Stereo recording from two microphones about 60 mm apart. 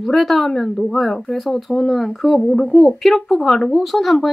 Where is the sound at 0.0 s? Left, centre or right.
Centre.